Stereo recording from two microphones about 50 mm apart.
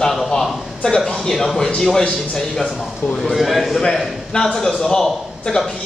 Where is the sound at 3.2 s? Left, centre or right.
Centre.